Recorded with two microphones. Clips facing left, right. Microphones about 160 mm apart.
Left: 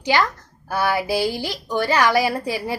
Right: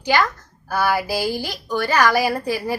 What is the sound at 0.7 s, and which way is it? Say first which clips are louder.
A woman's voice: even; 25° left (ahead or behind).